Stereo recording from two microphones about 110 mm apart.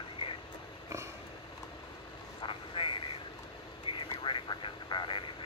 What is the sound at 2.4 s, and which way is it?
Vehicle, 50° left (ahead or behind).